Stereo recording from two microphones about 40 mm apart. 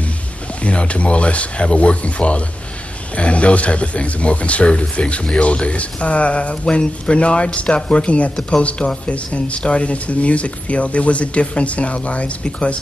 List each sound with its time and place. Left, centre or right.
0.6 s a man's voice: left